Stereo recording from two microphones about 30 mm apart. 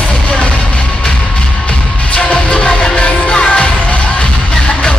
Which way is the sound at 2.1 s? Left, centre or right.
Left.